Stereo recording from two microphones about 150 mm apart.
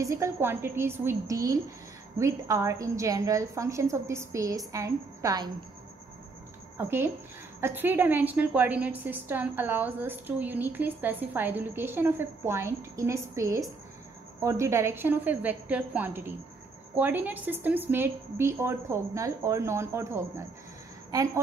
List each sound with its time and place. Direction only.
0.0 s a woman's voice: 20° right (ahead or behind)
6.8 s a woman's voice: 15° right (ahead or behind)